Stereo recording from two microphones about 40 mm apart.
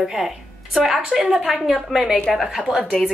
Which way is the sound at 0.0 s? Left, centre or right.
Centre.